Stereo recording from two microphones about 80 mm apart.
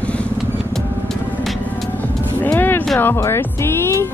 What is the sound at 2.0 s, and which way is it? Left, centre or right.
Music, left.